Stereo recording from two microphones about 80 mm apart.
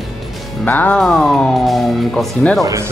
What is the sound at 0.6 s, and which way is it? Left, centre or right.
Speech, left.